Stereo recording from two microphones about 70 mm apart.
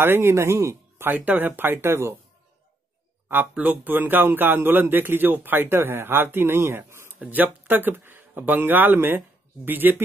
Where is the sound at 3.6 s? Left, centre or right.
Right.